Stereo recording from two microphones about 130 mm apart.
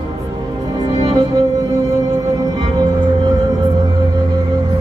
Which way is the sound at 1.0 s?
30° right (ahead or behind).